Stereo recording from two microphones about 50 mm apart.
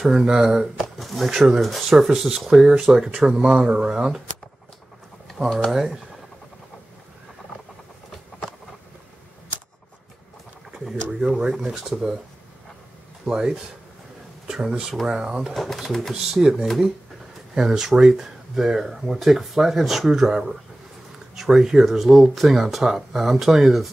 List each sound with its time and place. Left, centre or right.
0.0 s speech: centre
0.7 s speech: centre
5.7 s speech: centre
11.1 s speech: centre
13.2 s speech: centre
15.5 s speech: centre
17.6 s speech: centre